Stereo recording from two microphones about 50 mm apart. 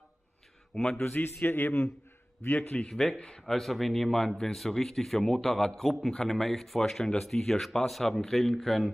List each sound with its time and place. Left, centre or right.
0.7 s a man's voice: centre
1.1 s a man's voice: left
2.4 s a man's voice: left
2.9 s a man's voice: centre
3.4 s a man's voice: centre